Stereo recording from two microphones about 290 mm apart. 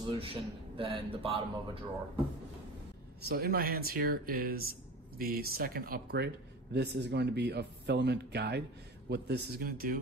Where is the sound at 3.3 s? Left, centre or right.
Right.